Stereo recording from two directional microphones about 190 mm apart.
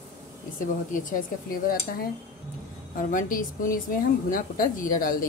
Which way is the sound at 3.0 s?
45° left (ahead or behind).